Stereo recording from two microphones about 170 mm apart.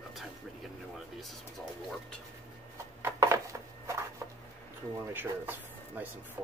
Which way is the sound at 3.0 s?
15° right (ahead or behind).